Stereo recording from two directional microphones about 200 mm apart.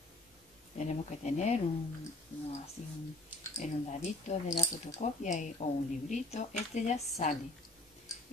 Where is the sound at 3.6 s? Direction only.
35° left (ahead or behind).